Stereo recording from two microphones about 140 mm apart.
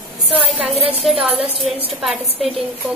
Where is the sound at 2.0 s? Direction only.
Centre (ahead or behind).